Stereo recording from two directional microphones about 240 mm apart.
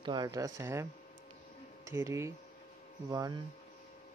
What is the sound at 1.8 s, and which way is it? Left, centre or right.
Speech, centre.